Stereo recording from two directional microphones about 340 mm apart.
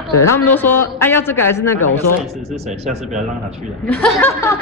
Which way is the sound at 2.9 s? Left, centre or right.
Right.